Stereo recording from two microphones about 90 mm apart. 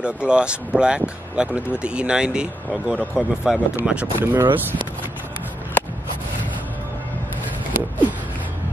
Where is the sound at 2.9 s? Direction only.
15° left (ahead or behind).